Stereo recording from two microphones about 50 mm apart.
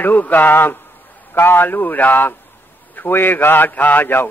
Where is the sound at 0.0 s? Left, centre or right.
Left.